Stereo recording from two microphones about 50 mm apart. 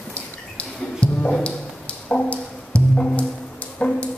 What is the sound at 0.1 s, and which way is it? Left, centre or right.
Drip, left.